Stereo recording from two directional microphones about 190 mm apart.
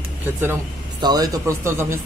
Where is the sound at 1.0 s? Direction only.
20° right (ahead or behind).